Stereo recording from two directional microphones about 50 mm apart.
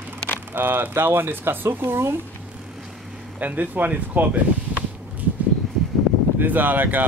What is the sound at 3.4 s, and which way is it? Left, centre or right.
Speech, right.